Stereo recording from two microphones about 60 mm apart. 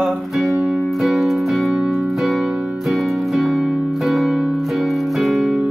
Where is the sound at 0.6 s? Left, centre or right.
Centre.